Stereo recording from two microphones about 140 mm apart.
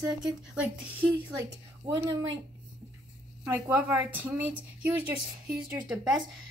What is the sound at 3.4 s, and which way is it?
A woman's voice, 15° right (ahead or behind).